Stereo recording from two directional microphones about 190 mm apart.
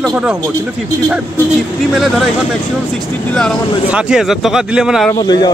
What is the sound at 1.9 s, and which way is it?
Speech, centre (ahead or behind).